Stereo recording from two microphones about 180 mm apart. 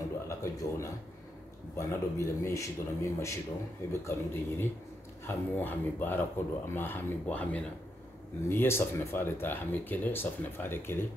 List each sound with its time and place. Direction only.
0.3 s a man's voice: 15° left (ahead or behind)